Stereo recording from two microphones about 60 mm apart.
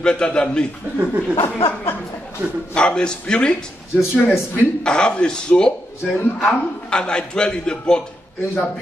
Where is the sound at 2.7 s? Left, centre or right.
Centre.